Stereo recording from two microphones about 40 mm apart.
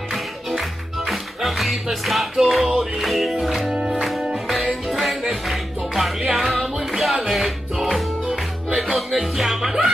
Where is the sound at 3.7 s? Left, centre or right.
Right.